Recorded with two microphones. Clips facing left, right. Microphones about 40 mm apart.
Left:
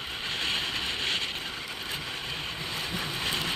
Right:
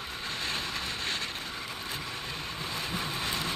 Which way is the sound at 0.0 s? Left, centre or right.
Left.